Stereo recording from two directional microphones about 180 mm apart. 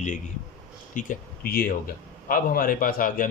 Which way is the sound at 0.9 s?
50° left (ahead or behind).